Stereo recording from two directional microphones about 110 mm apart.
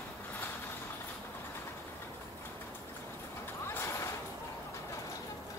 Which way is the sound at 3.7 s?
25° left (ahead or behind).